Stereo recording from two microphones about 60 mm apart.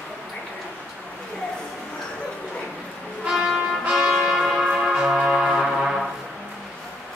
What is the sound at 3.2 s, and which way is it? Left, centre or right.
Music, centre.